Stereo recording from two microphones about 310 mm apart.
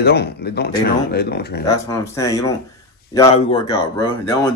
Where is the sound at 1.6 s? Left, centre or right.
Centre.